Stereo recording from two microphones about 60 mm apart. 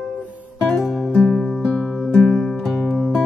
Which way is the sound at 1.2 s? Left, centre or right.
Centre.